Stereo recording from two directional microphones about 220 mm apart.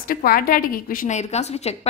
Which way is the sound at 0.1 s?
40° left (ahead or behind).